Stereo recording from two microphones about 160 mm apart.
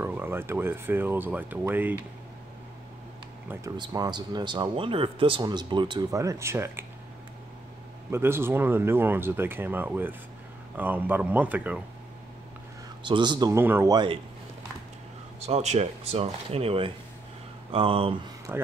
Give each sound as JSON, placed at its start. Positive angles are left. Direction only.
{"t": 0.0, "sound": "speech", "side_deg": -15}
{"t": 3.7, "sound": "speech", "side_deg": -25}
{"t": 6.0, "sound": "speech", "side_deg": -20}
{"t": 8.1, "sound": "speech", "side_deg": -15}
{"t": 13.0, "sound": "speech", "side_deg": -30}
{"t": 13.6, "sound": "speech", "side_deg": -15}
{"t": 15.4, "sound": "speech", "side_deg": -40}
{"t": 18.5, "sound": "speech", "side_deg": -15}